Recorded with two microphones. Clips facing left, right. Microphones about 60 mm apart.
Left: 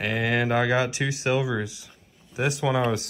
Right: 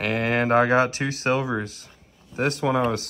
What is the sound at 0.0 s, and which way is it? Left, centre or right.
Speech, right.